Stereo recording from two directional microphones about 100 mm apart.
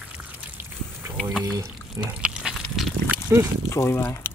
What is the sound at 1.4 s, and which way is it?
Speech, 40° right (ahead or behind).